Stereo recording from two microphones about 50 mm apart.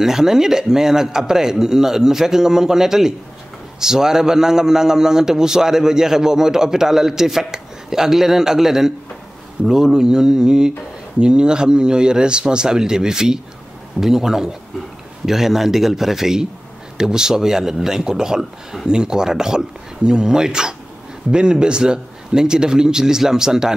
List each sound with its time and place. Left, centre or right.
0.0 s a man's voice: centre